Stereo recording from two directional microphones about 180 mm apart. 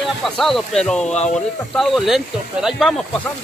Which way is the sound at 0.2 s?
Centre (ahead or behind).